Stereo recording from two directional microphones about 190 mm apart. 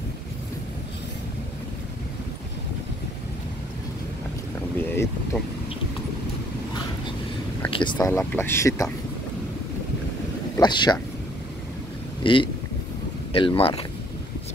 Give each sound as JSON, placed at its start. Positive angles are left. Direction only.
{"t": 4.7, "sound": "speech", "side_deg": 10}
{"t": 7.7, "sound": "speech", "side_deg": 25}
{"t": 8.2, "sound": "speech", "side_deg": 10}
{"t": 10.6, "sound": "speech", "side_deg": 25}
{"t": 12.2, "sound": "speech", "side_deg": 25}